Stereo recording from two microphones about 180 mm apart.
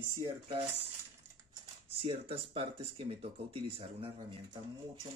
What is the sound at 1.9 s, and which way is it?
Speech, 30° right (ahead or behind).